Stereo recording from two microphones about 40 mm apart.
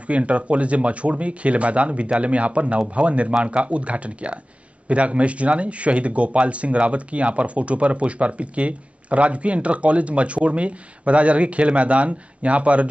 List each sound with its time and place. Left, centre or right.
0.0 s speech: right